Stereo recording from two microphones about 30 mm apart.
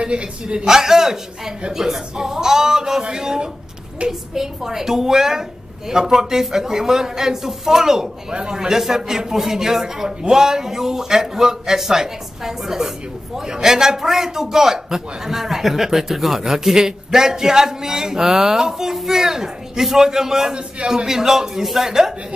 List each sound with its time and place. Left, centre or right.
0.0 s a woman's voice: right
0.7 s a man's voice: centre
4.0 s a woman's voice: right
4.4 s a man's voice: centre
8.3 s speech: right
8.5 s a man's voice: centre